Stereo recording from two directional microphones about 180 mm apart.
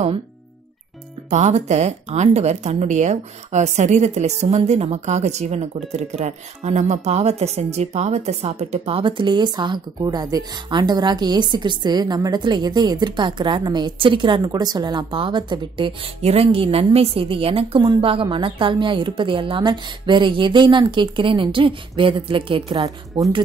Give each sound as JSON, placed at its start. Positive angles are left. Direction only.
{"t": 1.3, "sound": "a woman's voice", "side_deg": -40}